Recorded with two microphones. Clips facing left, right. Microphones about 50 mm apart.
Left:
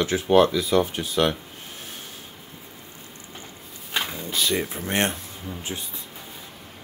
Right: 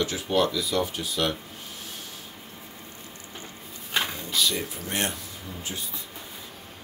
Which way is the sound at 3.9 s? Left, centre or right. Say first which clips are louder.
Even; centre.